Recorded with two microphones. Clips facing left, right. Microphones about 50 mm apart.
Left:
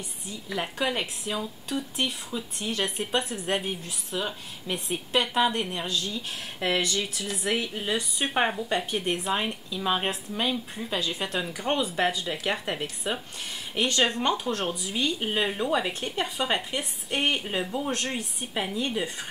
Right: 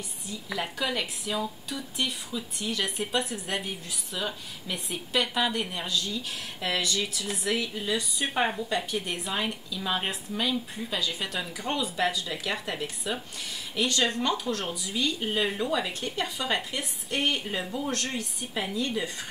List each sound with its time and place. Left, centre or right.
0.6 s speech: left
4.1 s speech: left
4.6 s speech: left